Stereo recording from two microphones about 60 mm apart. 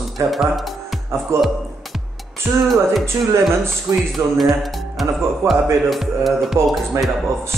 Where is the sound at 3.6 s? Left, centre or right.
Centre.